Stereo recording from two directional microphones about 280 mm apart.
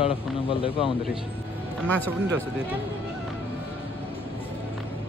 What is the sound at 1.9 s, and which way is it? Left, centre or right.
Speech, centre.